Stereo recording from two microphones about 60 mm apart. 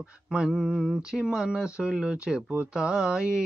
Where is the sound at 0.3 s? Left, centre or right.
Centre.